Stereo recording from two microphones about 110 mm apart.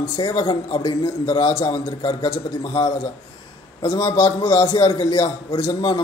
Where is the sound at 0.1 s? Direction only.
40° left (ahead or behind).